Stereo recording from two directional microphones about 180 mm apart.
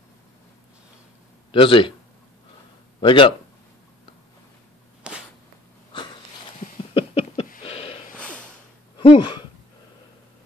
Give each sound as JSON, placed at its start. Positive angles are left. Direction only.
{"t": 1.5, "sound": "speech", "side_deg": 30}
{"t": 3.0, "sound": "speech", "side_deg": 30}
{"t": 5.1, "sound": "whip", "side_deg": -5}
{"t": 6.9, "sound": "a sound", "side_deg": 30}
{"t": 8.9, "sound": "speech", "side_deg": 30}